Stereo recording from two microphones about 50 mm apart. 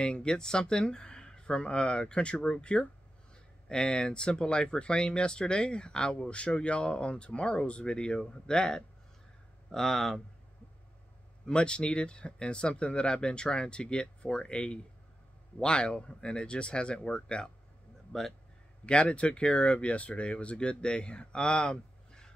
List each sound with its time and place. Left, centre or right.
0.0 s speech: centre
11.4 s speech: centre